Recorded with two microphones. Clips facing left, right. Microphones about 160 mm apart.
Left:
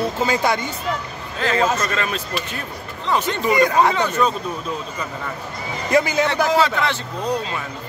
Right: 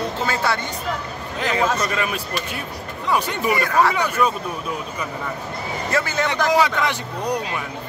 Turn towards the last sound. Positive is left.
turn(degrees=-15)  # may be behind; listen again after turning